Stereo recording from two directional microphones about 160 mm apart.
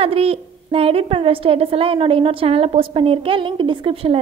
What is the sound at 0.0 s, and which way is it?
A woman's voice, 35° right (ahead or behind).